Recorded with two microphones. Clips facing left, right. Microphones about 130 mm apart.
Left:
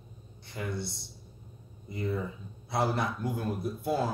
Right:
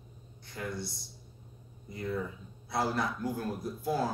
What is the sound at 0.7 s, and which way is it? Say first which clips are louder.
Speech: left 3 dB; 25° left (ahead or behind).